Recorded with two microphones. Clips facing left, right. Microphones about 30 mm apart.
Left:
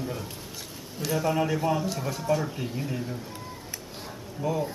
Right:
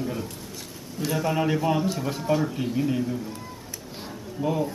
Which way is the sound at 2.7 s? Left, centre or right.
Centre.